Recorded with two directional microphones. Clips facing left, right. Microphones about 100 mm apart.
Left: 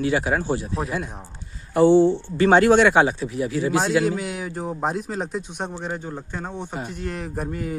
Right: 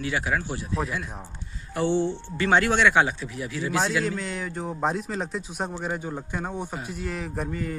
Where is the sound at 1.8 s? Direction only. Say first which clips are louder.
Left 9 dB; 40° left (ahead or behind).